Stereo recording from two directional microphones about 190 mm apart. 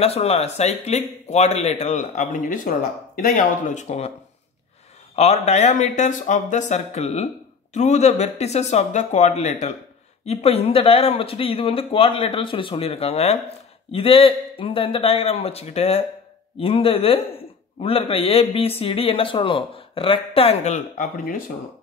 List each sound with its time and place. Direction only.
0.0 s speech: 30° left (ahead or behind)
5.1 s speech: 35° left (ahead or behind)